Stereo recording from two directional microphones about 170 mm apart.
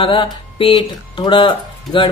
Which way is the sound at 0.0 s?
30° left (ahead or behind).